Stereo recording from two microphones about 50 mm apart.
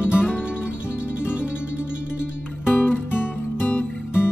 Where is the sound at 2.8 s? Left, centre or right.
Left.